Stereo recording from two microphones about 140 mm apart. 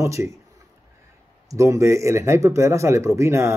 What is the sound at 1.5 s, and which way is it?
A man's voice, 20° right (ahead or behind).